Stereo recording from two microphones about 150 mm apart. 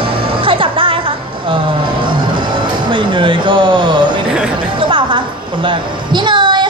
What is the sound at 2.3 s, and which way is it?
Music, 30° right (ahead or behind).